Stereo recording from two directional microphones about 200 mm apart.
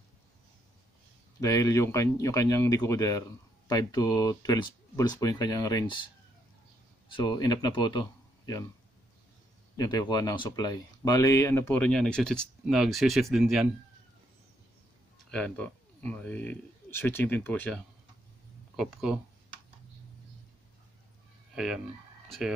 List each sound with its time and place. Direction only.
1.4 s speech: 15° left (ahead or behind)
7.1 s speech: 20° left (ahead or behind)
9.8 s speech: 20° left (ahead or behind); by 13.7 s centre (ahead or behind)
15.3 s speech: 5° left (ahead or behind)
18.8 s speech: centre (ahead or behind)
21.5 s speech: centre (ahead or behind)